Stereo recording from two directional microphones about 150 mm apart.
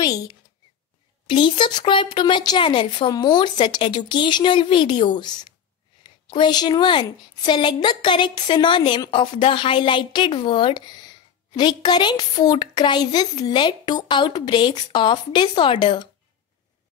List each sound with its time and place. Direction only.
0.0 s a woman's voice: 25° left (ahead or behind)